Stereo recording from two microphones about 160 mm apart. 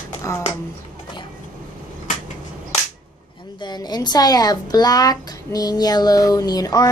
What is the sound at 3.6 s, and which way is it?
Speech, 25° left (ahead or behind).